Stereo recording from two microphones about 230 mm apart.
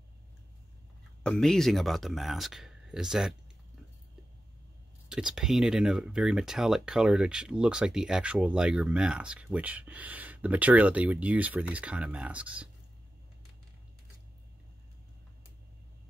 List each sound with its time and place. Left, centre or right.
1.2 s speech: centre
5.1 s speech: centre